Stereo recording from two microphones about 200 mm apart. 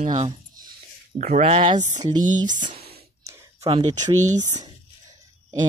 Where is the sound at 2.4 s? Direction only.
40° right (ahead or behind).